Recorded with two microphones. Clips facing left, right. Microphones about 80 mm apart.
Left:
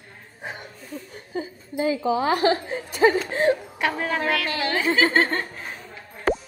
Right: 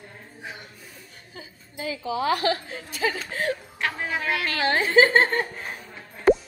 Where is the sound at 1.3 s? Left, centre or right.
Left.